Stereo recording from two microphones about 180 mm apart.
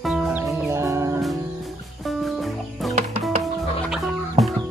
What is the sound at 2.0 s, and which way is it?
Fowl, centre (ahead or behind).